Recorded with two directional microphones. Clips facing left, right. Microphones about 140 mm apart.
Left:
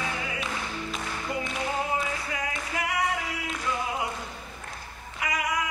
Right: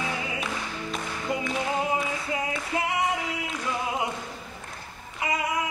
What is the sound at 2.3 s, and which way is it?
Singing, 25° right (ahead or behind).